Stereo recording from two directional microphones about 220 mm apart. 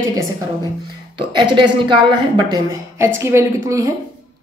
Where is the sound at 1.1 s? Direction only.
20° right (ahead or behind).